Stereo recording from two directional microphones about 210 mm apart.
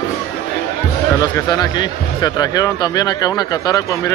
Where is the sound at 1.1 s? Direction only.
15° left (ahead or behind).